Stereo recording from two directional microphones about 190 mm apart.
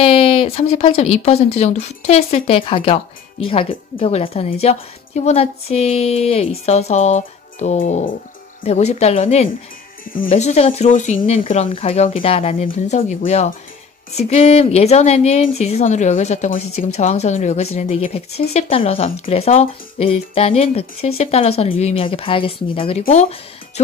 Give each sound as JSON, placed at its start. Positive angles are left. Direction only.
{"t": 0.0, "sound": "speech", "side_deg": 30}